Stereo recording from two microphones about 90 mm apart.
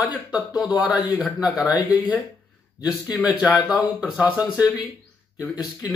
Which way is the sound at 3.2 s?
15° right (ahead or behind).